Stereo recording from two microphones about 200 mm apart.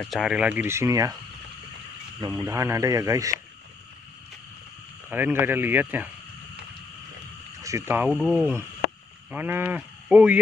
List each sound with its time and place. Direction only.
0.0 s speech: centre (ahead or behind)
2.1 s speech: 20° right (ahead or behind)
5.1 s speech: 10° right (ahead or behind)
7.6 s speech: 15° right (ahead or behind)